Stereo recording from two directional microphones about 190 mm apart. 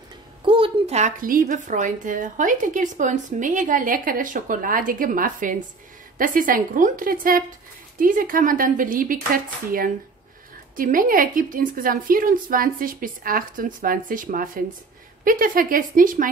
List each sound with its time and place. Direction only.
0.5 s a woman's voice: 30° right (ahead or behind)